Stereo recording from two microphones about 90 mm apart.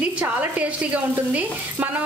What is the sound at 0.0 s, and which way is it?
Speech, 15° right (ahead or behind).